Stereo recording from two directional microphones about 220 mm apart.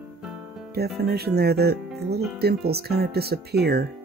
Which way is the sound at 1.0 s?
45° right (ahead or behind).